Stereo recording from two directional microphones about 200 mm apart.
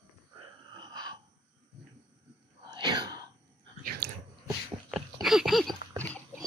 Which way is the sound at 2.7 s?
20° right (ahead or behind).